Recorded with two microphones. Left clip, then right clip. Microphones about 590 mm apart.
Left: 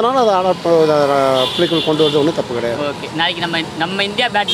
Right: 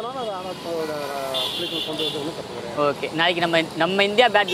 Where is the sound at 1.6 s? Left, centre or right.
Left.